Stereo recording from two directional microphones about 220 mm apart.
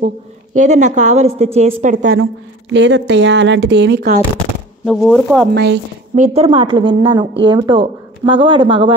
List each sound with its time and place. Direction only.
0.6 s a woman's voice: 35° right (ahead or behind)
2.7 s speech: 55° right (ahead or behind)
4.8 s speech: centre (ahead or behind)
5.5 s speech: 50° right (ahead or behind)
6.1 s speech: 30° right (ahead or behind)